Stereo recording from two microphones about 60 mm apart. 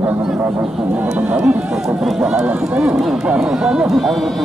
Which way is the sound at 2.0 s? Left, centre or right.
Centre.